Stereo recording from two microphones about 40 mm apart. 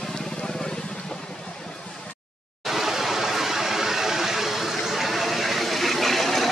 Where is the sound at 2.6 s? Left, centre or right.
Centre.